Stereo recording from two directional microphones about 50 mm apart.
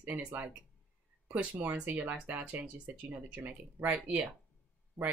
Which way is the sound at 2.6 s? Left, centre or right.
Right.